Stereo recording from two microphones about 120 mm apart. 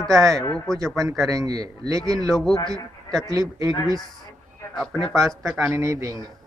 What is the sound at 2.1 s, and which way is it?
A man's voice, 5° left (ahead or behind).